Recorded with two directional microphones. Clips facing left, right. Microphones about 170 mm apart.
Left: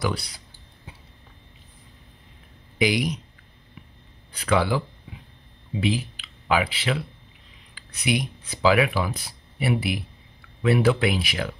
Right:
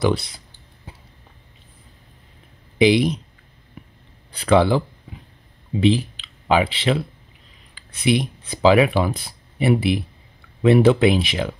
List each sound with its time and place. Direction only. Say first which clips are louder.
0.0 s speech: right 7 dB; 25° right (ahead or behind)
2.8 s speech: right 7 dB; 25° right (ahead or behind)
4.3 s speech: right 6 dB; 30° right (ahead or behind)